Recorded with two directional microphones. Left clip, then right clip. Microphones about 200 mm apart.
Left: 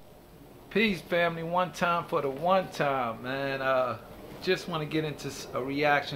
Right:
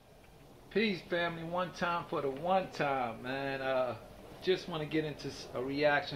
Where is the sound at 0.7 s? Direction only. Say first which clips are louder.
Left 6 dB; 35° left (ahead or behind).